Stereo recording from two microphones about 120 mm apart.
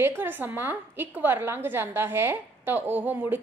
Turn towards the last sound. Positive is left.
turn(degrees=-15)  # may be behind; listen again after turning